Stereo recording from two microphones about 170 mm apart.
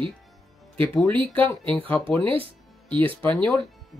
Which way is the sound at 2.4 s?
30° right (ahead or behind).